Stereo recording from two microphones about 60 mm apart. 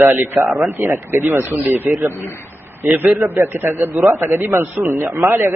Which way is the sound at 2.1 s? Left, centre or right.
Left.